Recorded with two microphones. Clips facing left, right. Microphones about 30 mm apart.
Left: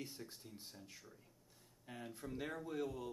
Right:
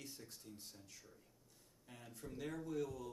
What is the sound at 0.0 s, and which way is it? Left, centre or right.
Speech, left.